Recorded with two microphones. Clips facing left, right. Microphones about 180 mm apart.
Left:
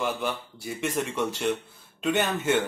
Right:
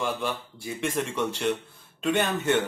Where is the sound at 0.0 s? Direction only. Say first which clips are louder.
Even; centre (ahead or behind).